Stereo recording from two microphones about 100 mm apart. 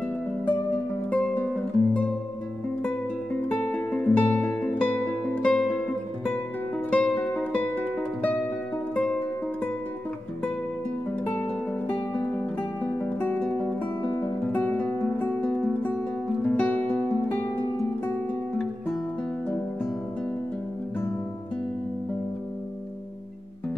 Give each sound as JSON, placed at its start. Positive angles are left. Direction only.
{"t": 1.1, "sound": "music", "side_deg": 15}
{"t": 3.4, "sound": "music", "side_deg": 10}
{"t": 6.9, "sound": "music", "side_deg": 10}
{"t": 11.2, "sound": "music", "side_deg": 15}